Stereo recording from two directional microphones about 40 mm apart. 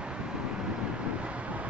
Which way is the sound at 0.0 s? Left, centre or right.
Right.